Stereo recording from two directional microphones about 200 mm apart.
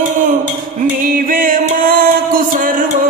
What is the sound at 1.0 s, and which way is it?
Music, 45° right (ahead or behind).